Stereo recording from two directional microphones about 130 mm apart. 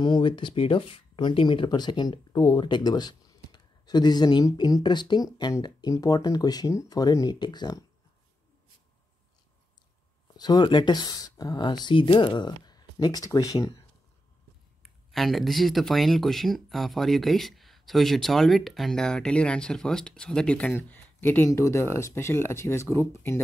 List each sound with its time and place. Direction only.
0.0 s speech: 35° left (ahead or behind)
10.3 s speech: 30° left (ahead or behind)
14.8 s speech: centre (ahead or behind); by 23.4 s 20° left (ahead or behind)